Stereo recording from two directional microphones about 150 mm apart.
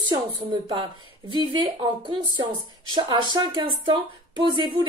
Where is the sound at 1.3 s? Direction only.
30° right (ahead or behind).